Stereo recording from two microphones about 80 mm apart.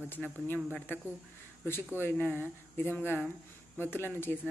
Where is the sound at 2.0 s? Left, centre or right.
Left.